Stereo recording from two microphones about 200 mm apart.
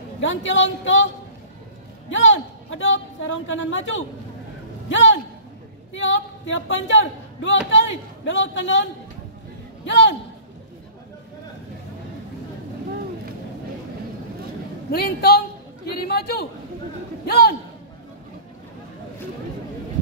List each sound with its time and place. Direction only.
0.2 s a man's voice: 70° left (ahead or behind)
2.0 s a man's voice: 70° left (ahead or behind)
9.8 s a man's voice: 65° left (ahead or behind)
14.9 s a woman's voice: 50° left (ahead or behind)
16.0 s a sound: 50° left (ahead or behind)
17.3 s a woman's voice: 50° left (ahead or behind)